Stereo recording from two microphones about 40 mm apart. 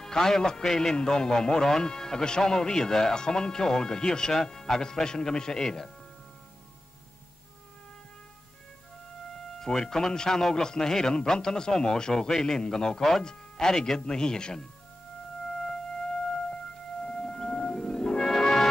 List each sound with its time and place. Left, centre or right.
0.0 s a man's voice: centre
9.6 s a man's voice: centre
15.6 s music: centre
17.0 s singing bowl: centre
17.6 s music: centre